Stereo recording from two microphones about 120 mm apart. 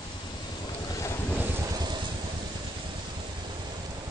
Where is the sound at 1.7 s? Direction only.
35° right (ahead or behind).